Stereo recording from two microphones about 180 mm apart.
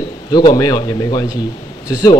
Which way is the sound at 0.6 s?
20° left (ahead or behind).